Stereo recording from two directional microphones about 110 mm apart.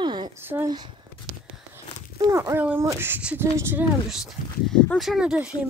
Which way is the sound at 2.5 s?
15° right (ahead or behind).